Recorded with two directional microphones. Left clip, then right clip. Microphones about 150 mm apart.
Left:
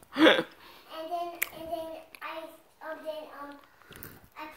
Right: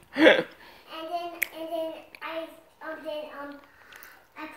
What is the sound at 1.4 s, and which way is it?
Child singing, 35° left (ahead or behind).